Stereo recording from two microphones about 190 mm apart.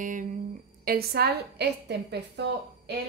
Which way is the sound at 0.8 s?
55° right (ahead or behind).